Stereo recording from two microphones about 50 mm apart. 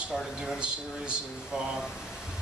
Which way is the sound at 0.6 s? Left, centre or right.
Centre.